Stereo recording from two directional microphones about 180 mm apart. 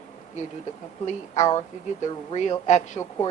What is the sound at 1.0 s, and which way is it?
Speech, 40° left (ahead or behind).